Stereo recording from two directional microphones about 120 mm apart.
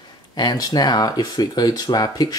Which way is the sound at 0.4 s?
35° left (ahead or behind).